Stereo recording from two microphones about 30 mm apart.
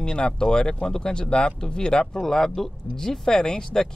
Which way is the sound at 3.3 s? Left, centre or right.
Left.